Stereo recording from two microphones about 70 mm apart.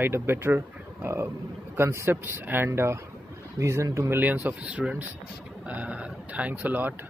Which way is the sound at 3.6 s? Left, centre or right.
Right.